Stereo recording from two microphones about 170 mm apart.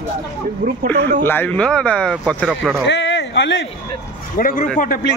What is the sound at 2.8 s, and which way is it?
Speech, 90° left.